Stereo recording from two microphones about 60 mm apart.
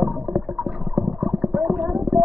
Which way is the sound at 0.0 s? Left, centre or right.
Centre.